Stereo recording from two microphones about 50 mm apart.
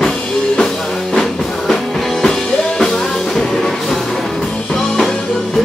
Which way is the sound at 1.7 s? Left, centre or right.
Centre.